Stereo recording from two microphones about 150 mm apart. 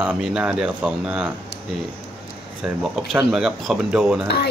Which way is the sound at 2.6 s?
5° right (ahead or behind).